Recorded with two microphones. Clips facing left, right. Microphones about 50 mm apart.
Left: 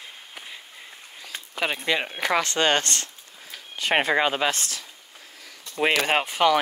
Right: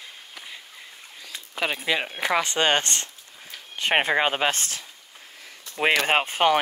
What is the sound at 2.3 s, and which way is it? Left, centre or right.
Speech, centre.